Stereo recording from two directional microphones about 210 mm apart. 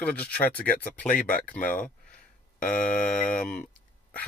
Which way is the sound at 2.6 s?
40° left (ahead or behind).